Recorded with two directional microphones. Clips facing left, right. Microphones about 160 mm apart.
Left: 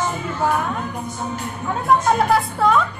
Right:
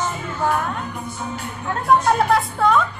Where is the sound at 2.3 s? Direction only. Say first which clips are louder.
Even; centre (ahead or behind).